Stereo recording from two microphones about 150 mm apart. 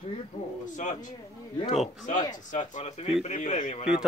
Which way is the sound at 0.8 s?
55° left (ahead or behind).